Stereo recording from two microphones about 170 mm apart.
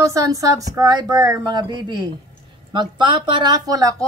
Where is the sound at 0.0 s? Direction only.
20° right (ahead or behind).